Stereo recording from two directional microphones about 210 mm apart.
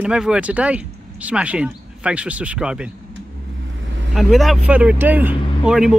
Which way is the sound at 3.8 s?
60° right (ahead or behind).